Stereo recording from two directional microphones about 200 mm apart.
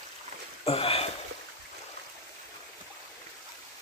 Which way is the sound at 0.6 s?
30° left (ahead or behind).